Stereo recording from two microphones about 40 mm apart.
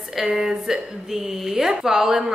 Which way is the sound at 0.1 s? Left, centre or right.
Centre.